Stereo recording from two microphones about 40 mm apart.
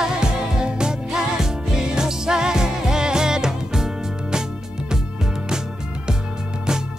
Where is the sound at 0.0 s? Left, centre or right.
Right.